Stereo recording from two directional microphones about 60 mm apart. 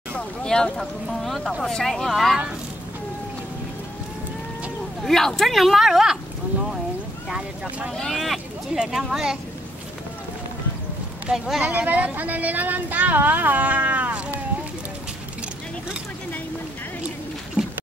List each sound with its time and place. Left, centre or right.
0.4 s speech: centre
5.0 s speech: centre
7.9 s speech: centre
8.7 s speech: centre
11.3 s speech: centre
11.6 s speech: right